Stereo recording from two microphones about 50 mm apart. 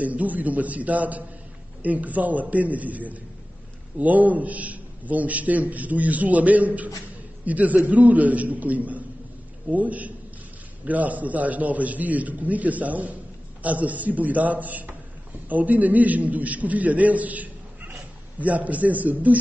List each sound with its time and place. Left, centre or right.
0.0 s a man's voice: right